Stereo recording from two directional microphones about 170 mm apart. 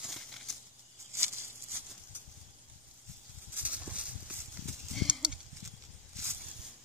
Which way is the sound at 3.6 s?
10° right (ahead or behind).